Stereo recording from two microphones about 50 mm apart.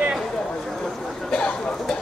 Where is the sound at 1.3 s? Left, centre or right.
Centre.